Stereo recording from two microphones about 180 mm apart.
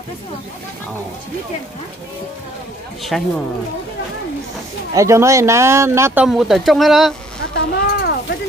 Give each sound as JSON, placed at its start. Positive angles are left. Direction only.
{"t": 3.1, "sound": "speech", "side_deg": 0}
{"t": 4.9, "sound": "speech", "side_deg": -15}
{"t": 6.2, "sound": "speech", "side_deg": 0}
{"t": 7.5, "sound": "a sound", "side_deg": 60}